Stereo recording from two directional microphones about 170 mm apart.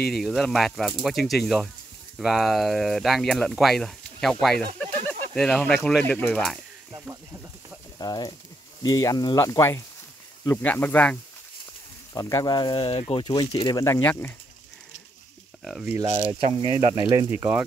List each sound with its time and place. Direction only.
0.1 s speech: centre (ahead or behind)
8.0 s speech: 25° left (ahead or behind)
15.6 s speech: centre (ahead or behind)
16.3 s speech: 30° right (ahead or behind)
16.9 s speech: 20° right (ahead or behind)
17.3 s speech: 10° right (ahead or behind)